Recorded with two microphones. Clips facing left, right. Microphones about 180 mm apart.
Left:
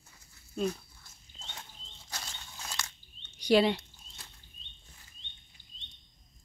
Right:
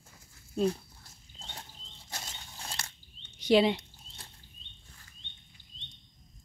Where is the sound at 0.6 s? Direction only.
30° right (ahead or behind).